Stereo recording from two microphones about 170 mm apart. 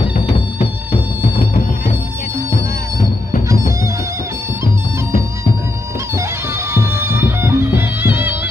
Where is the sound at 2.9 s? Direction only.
20° right (ahead or behind).